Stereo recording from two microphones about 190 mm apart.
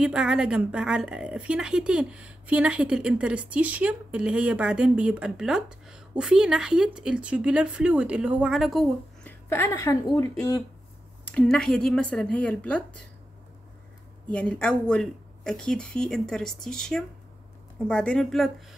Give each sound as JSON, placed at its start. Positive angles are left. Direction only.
{"t": 0.0, "sound": "a woman's voice", "side_deg": -5}
{"t": 11.2, "sound": "a woman's voice", "side_deg": 5}
{"t": 14.2, "sound": "a woman's voice", "side_deg": 5}